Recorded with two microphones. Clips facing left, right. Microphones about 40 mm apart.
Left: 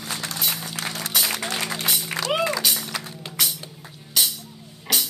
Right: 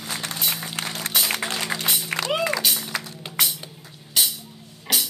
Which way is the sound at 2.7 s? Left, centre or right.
Centre.